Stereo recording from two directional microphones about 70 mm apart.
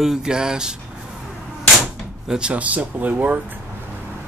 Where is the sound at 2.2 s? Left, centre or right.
Centre.